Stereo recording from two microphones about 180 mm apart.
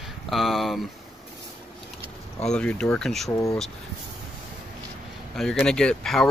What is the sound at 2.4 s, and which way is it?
Speech, 5° left (ahead or behind).